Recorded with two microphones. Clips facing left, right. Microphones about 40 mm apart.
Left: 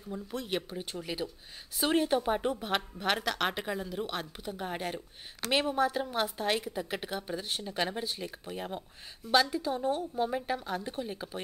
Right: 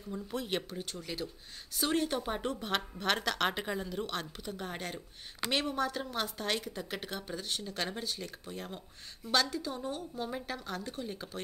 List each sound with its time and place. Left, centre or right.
0.1 s speech: centre
0.7 s a woman's voice: centre